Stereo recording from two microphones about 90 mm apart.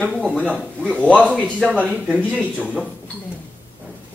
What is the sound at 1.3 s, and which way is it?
Speech, 15° left (ahead or behind).